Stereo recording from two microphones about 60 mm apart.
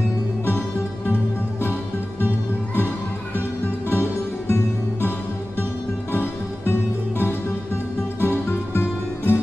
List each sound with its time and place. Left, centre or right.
0.5 s music: left
3.9 s music: left
6.1 s music: left